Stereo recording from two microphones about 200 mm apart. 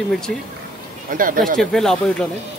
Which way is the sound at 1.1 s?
45° right (ahead or behind).